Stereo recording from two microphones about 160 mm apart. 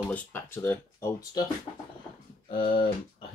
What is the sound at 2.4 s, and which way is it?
Speech, 35° left (ahead or behind).